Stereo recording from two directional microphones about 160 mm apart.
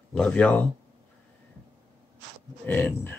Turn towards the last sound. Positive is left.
turn(degrees=10)  # may be behind; listen again after turning